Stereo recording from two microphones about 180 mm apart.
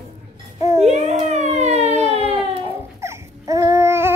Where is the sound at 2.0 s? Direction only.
35° left (ahead or behind).